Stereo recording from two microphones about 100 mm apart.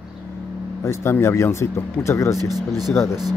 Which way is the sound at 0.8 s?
25° left (ahead or behind).